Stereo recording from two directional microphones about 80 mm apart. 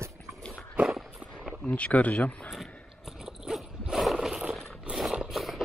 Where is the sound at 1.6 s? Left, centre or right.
Centre.